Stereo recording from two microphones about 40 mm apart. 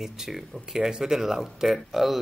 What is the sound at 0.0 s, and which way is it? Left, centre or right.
Speech, centre.